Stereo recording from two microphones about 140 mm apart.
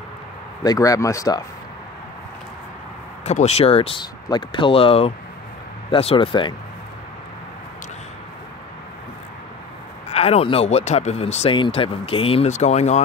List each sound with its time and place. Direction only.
0.7 s speech: 25° left (ahead or behind)
3.3 s speech: 50° left (ahead or behind)
10.1 s speech: 45° left (ahead or behind)
11.5 s speech: 40° left (ahead or behind); by 13.0 s 55° left (ahead or behind)